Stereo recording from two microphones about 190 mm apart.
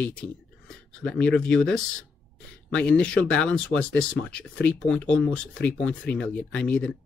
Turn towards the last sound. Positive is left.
turn(degrees=5)  # may be behind; listen again after turning